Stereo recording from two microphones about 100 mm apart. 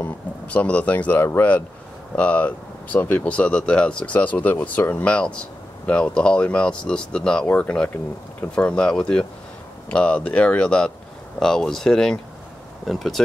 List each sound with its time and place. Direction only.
0.0 s speech: 15° left (ahead or behind)